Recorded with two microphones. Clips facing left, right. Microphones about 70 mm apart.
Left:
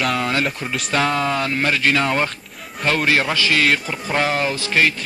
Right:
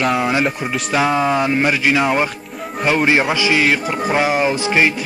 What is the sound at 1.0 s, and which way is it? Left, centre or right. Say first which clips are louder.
Mantra: right 7 dB; centre.